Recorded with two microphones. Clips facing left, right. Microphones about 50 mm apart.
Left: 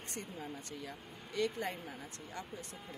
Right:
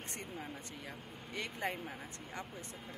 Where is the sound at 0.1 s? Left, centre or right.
Right.